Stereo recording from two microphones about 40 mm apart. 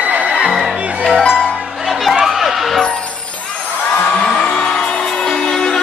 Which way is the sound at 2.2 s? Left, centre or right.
Centre.